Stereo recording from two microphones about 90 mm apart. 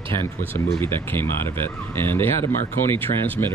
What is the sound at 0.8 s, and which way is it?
Speech, 25° left (ahead or behind).